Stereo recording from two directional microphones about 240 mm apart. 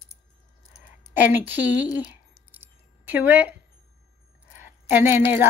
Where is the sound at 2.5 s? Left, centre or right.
Centre.